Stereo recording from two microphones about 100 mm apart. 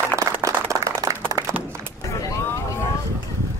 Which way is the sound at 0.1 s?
30° right (ahead or behind).